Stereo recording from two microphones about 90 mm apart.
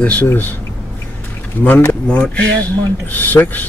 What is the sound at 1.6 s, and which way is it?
Speech, 20° left (ahead or behind).